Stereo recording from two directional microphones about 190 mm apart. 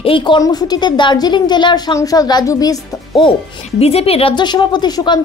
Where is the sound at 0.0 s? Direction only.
25° left (ahead or behind).